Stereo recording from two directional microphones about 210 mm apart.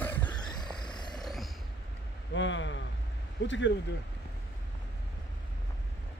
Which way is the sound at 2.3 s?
60° left (ahead or behind).